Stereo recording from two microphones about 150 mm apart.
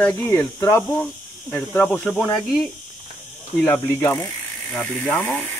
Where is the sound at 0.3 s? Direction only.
20° left (ahead or behind).